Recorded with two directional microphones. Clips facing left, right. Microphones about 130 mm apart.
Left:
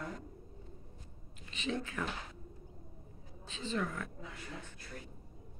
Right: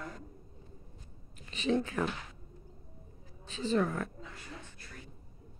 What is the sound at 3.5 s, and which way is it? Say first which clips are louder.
Speech: right 7 dB; 40° right (ahead or behind).